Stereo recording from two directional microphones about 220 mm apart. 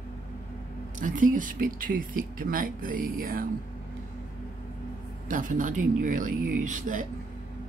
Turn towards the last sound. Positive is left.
turn(degrees=-35)  # may be behind; listen again after turning